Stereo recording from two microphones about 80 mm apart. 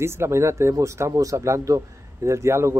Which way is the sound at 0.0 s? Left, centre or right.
Right.